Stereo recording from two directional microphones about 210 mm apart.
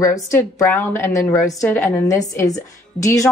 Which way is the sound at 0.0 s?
15° left (ahead or behind).